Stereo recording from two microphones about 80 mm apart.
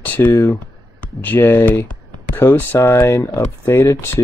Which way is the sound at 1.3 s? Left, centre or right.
Left.